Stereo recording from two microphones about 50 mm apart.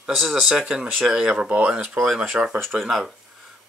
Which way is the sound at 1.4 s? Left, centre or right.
Right.